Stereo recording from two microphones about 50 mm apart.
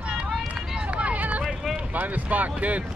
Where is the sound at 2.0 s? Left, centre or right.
Right.